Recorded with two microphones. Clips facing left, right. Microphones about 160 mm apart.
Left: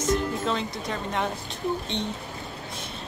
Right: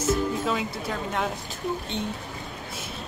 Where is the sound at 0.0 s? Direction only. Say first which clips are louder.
Right 1 dB; 5° right (ahead or behind).